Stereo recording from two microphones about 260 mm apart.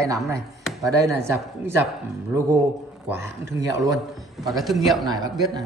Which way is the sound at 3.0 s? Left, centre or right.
Centre.